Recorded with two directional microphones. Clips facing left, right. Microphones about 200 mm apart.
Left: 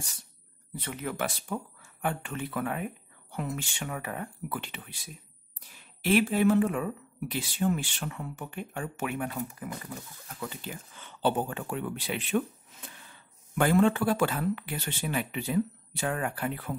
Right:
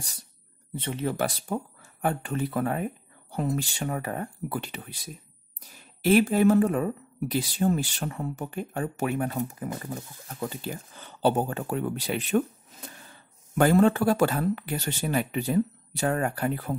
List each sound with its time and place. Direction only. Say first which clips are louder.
0.7 s speech: right 5 dB; 30° right (ahead or behind)
9.4 s speech: right 5 dB; 25° right (ahead or behind)
9.8 s speech: right 5 dB; 35° right (ahead or behind)